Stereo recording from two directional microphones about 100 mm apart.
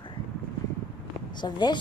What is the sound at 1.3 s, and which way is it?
Speech, 50° left (ahead or behind).